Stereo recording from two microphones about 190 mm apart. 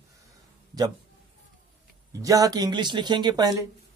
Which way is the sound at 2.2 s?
20° right (ahead or behind).